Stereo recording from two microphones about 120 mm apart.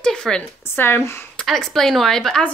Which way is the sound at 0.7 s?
20° left (ahead or behind).